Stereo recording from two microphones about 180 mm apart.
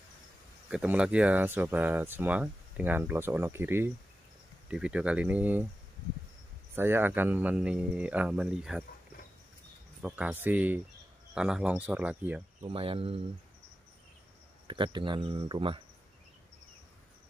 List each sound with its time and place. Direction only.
0.7 s speech: 5° right (ahead or behind)
6.7 s speech: 10° right (ahead or behind)
10.0 s speech: 10° right (ahead or behind)
12.6 s speech: 30° right (ahead or behind)
14.7 s speech: 25° right (ahead or behind)